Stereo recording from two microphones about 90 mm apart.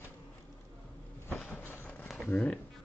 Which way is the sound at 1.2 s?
25° left (ahead or behind).